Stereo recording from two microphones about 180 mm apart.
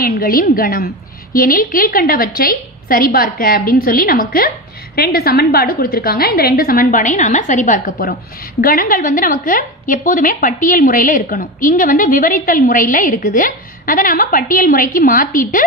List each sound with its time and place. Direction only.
0.0 s a woman's voice: 55° left (ahead or behind)